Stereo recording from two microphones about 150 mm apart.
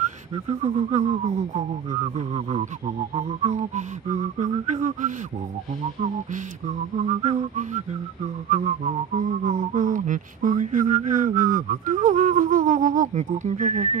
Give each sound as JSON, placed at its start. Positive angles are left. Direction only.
{"t": 0.7, "sound": "speech", "side_deg": -45}
{"t": 7.0, "sound": "speech", "side_deg": -45}